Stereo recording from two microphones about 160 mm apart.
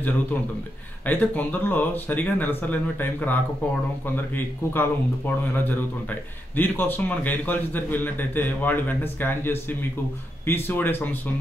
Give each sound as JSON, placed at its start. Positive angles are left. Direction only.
{"t": 1.0, "sound": "a man's voice", "side_deg": 10}
{"t": 4.7, "sound": "a man's voice", "side_deg": 10}